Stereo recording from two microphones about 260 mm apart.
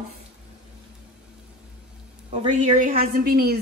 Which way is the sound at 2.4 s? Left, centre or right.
Right.